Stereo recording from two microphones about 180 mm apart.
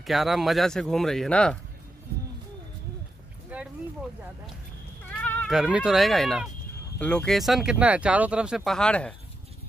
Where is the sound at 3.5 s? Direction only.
10° right (ahead or behind).